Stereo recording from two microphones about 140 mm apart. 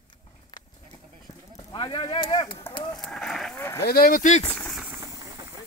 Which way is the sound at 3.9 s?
90° left.